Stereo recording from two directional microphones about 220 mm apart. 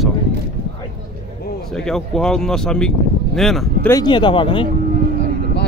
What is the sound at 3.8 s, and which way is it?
Speech, 20° left (ahead or behind).